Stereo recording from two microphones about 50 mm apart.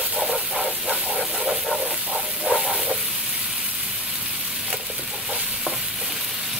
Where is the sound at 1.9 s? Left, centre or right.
Right.